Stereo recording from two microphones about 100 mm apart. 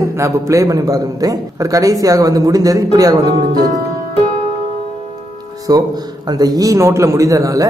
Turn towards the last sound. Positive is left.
turn(degrees=-35)  # may be behind; listen again after turning